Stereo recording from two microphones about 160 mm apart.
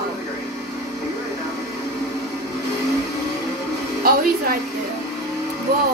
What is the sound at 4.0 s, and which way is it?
Speech, 70° right (ahead or behind).